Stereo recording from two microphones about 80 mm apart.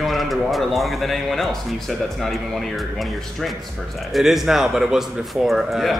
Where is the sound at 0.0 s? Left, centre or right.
Centre.